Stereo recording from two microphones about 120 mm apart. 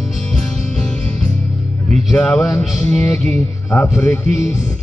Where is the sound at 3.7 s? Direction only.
20° left (ahead or behind).